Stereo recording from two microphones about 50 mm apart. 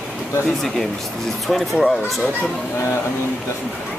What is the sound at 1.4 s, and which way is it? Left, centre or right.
Speech, centre.